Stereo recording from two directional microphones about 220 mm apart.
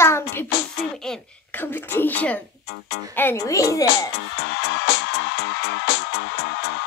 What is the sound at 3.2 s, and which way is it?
Speech, 10° left (ahead or behind).